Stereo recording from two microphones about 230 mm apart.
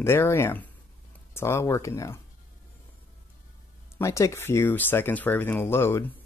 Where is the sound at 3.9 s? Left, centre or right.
Centre.